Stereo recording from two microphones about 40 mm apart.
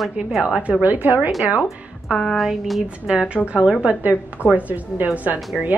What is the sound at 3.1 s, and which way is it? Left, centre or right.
A woman's voice, right.